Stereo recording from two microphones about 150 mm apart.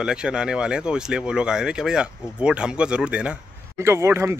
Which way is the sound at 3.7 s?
15° right (ahead or behind).